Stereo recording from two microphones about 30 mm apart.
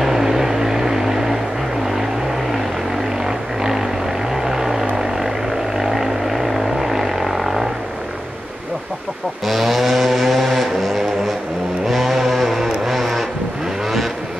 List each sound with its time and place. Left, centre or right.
0.0 s vehicle: centre
3.3 s a sound: centre
4.5 s vehicle: centre
9.5 s a sound: centre
11.9 s vehicle: centre
12.9 s vehicle: centre